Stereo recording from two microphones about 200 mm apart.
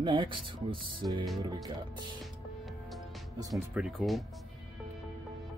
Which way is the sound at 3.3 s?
15° right (ahead or behind).